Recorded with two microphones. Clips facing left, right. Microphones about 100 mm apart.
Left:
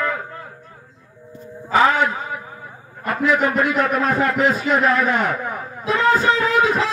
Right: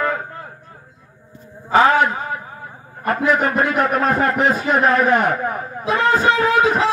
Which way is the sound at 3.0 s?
40° right (ahead or behind).